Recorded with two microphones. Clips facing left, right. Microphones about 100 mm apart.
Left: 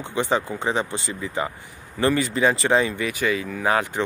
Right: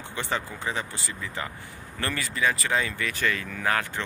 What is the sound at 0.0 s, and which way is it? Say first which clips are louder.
Speech: left 8 dB; 20° left (ahead or behind).